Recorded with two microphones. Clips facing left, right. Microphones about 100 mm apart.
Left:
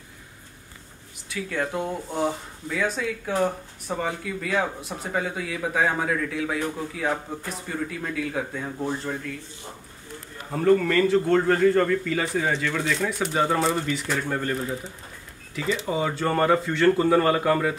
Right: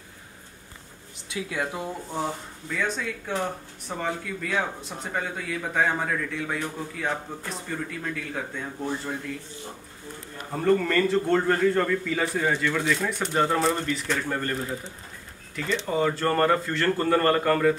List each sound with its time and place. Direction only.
1.5 s a man's voice: 5° right (ahead or behind)
10.5 s a man's voice: centre (ahead or behind)